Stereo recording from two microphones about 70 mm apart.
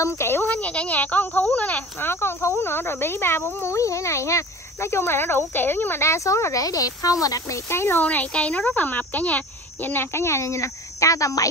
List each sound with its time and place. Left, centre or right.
0.0 s speech: left
0.5 s speech: left
2.0 s speech: left
7.7 s speech: left
8.0 s speech: left